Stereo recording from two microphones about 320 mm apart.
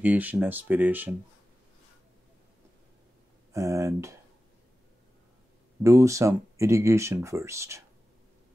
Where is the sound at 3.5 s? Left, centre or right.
Centre.